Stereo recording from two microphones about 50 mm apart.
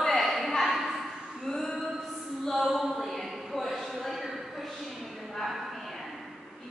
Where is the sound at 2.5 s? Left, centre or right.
Centre.